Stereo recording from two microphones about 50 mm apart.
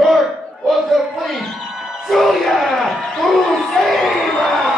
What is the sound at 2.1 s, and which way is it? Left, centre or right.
Speech, centre.